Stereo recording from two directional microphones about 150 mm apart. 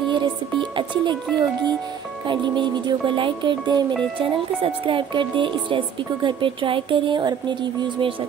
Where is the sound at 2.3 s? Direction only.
30° right (ahead or behind).